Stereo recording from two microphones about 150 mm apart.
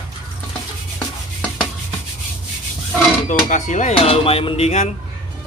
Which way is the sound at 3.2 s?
55° left (ahead or behind).